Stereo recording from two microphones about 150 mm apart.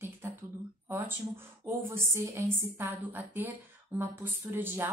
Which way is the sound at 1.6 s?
20° right (ahead or behind).